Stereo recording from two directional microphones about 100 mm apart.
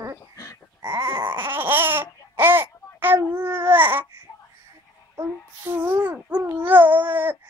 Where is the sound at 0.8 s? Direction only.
25° right (ahead or behind).